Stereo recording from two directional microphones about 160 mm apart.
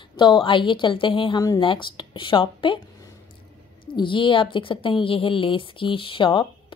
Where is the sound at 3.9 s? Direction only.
30° left (ahead or behind).